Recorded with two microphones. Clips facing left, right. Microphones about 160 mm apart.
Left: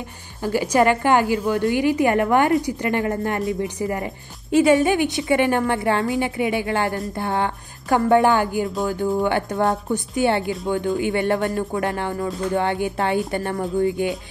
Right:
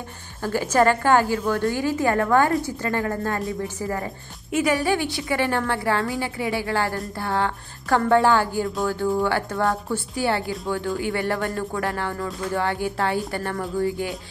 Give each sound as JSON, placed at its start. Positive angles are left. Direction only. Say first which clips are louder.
{"t": 0.4, "sound": "a woman's voice", "louder": "left 2 dB", "side_deg": 15}